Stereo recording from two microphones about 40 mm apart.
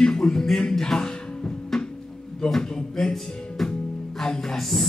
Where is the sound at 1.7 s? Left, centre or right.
Centre.